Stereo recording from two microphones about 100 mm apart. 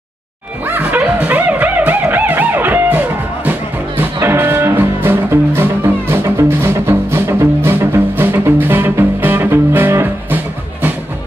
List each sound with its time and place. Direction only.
0.7 s music: 15° right (ahead or behind)